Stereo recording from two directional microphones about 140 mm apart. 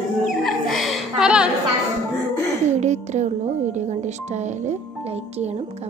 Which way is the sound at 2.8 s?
55° right (ahead or behind).